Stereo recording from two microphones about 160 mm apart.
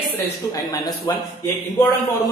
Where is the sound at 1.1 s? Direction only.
25° left (ahead or behind).